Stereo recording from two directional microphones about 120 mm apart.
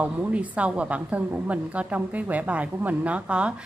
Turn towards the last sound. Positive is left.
turn(degrees=-10)  # may be behind; listen again after turning